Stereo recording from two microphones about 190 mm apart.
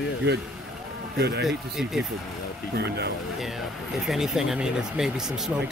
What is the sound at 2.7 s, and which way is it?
Speech, 60° right (ahead or behind).